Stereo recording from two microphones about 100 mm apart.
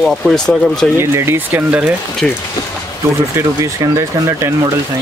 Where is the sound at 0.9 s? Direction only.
25° right (ahead or behind).